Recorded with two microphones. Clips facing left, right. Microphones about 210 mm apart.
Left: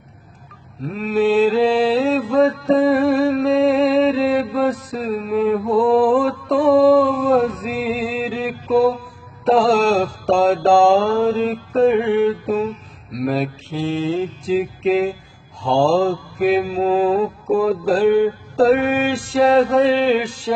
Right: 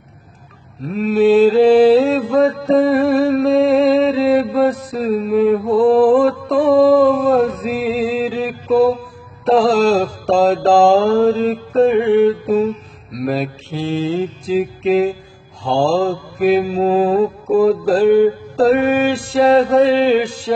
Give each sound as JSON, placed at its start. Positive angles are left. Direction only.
{"t": 0.9, "sound": "mantra", "side_deg": 0}
{"t": 2.0, "sound": "music", "side_deg": 0}
{"t": 9.4, "sound": "mantra", "side_deg": 0}
{"t": 16.8, "sound": "music", "side_deg": -40}
{"t": 17.8, "sound": "mantra", "side_deg": 0}
{"t": 18.9, "sound": "music", "side_deg": -35}
{"t": 19.3, "sound": "mantra", "side_deg": 0}